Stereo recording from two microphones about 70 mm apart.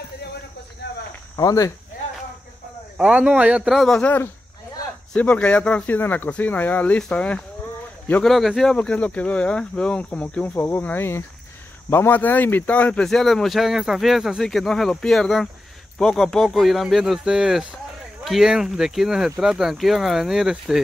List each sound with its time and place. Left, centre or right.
1.3 s speech: left
3.0 s a man's voice: centre
3.7 s speech: centre
4.0 s speech: left
5.1 s speech: centre
8.2 s speech: centre
8.7 s speech: centre
13.0 s speech: centre